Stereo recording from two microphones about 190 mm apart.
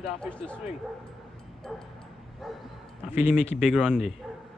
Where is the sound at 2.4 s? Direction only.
Centre (ahead or behind).